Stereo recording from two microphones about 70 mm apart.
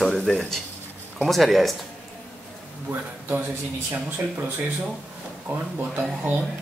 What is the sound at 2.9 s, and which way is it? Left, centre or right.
Speech, right.